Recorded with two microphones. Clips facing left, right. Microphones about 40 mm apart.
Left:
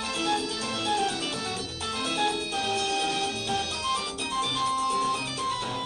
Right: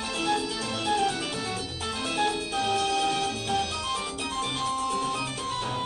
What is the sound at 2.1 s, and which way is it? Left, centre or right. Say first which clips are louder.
Music: right 1 dB; centre.